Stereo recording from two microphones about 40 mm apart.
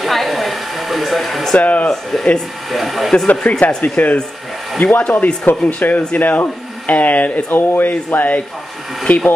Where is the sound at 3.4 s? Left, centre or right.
Left.